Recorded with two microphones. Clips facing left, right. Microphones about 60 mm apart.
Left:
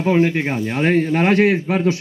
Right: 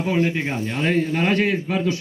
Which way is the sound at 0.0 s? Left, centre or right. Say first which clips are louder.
Left 5 dB; left.